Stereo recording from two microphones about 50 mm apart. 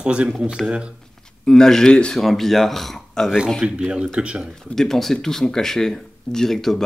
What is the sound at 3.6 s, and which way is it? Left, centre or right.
Speech, centre.